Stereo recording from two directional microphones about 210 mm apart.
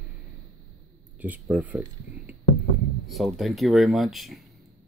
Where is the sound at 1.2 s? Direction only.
5° right (ahead or behind).